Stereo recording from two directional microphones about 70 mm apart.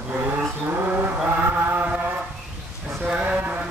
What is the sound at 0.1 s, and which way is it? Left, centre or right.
Mantra, right.